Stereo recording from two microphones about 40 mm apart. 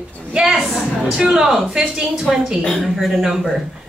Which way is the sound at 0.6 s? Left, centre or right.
Centre.